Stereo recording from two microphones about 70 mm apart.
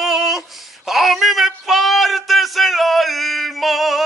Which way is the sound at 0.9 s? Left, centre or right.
Centre.